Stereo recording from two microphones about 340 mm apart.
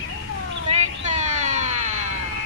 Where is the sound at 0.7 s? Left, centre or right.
Centre.